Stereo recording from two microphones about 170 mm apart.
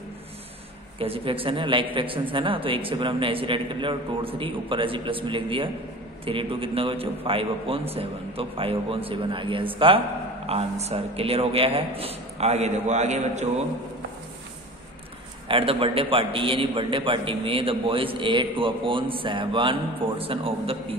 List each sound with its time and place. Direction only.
0.9 s a man's voice: 35° right (ahead or behind)
15.4 s a man's voice: 30° right (ahead or behind)